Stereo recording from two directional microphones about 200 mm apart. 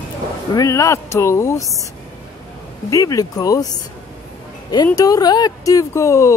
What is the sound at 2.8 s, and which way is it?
Speech, 20° left (ahead or behind).